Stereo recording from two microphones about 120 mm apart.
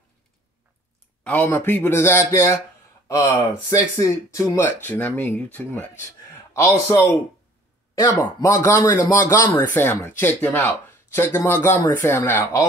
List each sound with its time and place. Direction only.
1.2 s speech: 15° left (ahead or behind)
4.6 s a man's voice: 15° left (ahead or behind)